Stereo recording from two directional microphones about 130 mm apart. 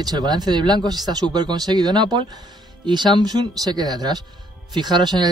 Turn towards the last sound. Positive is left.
turn(degrees=-35)  # may be behind; listen again after turning